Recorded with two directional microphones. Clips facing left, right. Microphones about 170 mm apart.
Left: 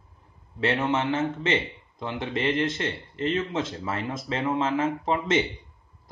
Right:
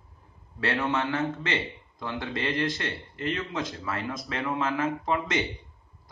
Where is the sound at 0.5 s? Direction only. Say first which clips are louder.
Left 3 dB; 20° left (ahead or behind).